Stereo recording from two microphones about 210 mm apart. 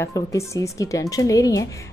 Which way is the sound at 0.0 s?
15° left (ahead or behind).